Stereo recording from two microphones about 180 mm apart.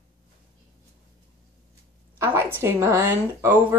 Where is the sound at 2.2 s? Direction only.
10° right (ahead or behind).